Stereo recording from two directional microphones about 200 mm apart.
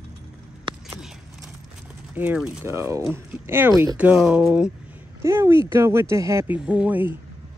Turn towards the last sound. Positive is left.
turn(degrees=-5)  # may be behind; listen again after turning